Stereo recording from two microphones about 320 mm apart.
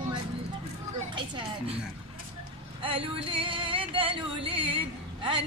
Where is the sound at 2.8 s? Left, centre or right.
Centre.